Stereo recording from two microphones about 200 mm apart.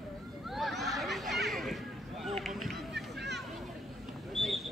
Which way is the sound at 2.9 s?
60° right (ahead or behind).